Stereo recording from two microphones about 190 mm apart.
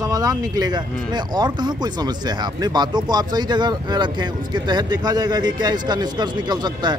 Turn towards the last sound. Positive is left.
turn(degrees=-25)  # may be behind; listen again after turning